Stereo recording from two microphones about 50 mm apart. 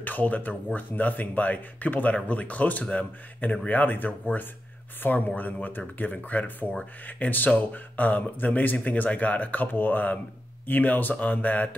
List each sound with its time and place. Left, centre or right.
0.0 s a man's voice: left